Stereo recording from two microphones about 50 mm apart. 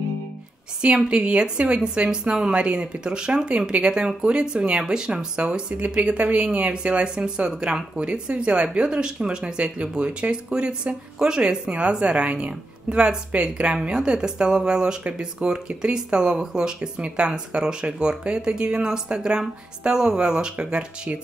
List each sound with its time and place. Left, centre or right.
0.8 s speech: centre